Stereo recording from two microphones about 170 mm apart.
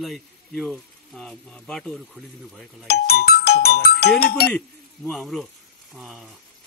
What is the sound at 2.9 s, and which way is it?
Speech, 65° left (ahead or behind).